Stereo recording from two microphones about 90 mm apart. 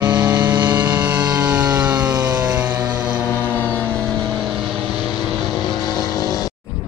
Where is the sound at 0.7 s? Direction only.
15° right (ahead or behind).